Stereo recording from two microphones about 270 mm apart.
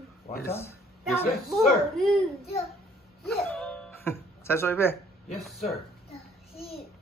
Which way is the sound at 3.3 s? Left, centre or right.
Centre.